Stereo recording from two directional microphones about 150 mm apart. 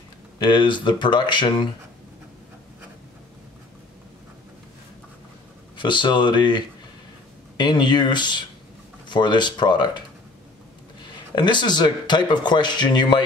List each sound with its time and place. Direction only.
0.5 s speech: 30° left (ahead or behind)
5.8 s speech: 30° left (ahead or behind)
11.3 s speech: 30° left (ahead or behind)